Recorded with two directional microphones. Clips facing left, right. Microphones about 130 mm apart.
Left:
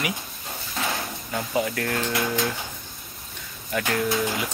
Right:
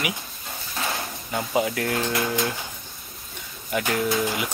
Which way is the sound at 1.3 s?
20° right (ahead or behind).